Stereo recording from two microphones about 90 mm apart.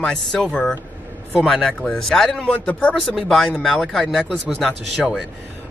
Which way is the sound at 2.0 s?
5° left (ahead or behind).